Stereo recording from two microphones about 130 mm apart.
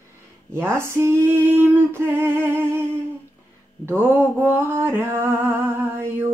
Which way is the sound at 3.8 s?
15° right (ahead or behind).